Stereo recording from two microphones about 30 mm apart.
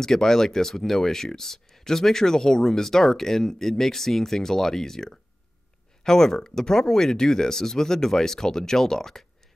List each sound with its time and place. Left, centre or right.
0.0 s speech: centre